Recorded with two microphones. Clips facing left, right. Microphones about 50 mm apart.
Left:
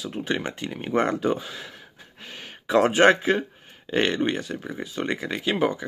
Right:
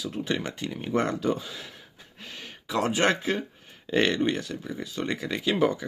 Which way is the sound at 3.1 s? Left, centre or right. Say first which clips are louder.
Left 6 dB; centre.